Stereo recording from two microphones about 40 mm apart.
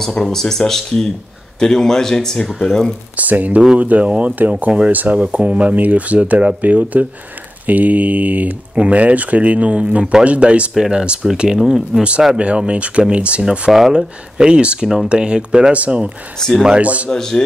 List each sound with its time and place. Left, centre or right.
0.0 s speech: centre
3.2 s speech: right
4.6 s speech: right
11.6 s speech: centre
12.4 s speech: right
13.7 s speech: centre
14.4 s speech: right
16.3 s speech: centre
16.7 s speech: right
17.1 s speech: centre